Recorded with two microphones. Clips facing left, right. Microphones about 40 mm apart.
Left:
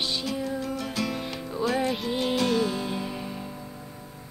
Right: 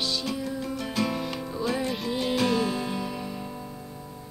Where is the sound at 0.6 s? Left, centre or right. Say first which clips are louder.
Right 1 dB; centre.